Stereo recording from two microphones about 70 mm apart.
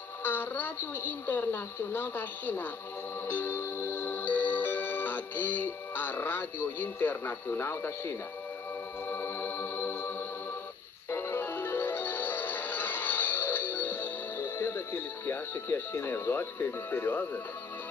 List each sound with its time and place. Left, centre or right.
0.2 s a woman's voice: left
3.3 s music: left